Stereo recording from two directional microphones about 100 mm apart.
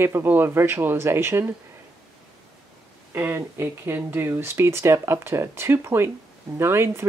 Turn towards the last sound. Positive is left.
turn(degrees=-25)  # may be behind; listen again after turning